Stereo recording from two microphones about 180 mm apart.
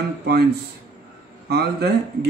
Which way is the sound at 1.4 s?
65° right (ahead or behind).